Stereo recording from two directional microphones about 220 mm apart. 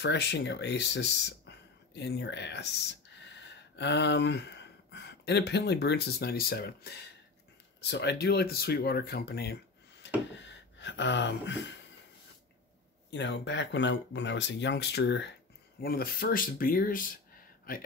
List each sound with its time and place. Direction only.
0.0 s speech: 50° left (ahead or behind)
13.1 s speech: 55° left (ahead or behind)